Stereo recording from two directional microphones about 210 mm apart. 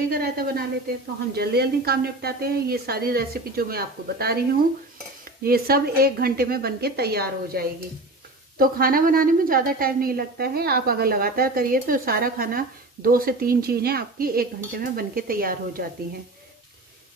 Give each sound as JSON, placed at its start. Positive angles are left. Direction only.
{"t": 0.1, "sound": "a woman's voice", "side_deg": -45}